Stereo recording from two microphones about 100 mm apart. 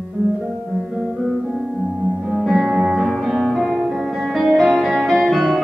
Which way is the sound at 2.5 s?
5° right (ahead or behind).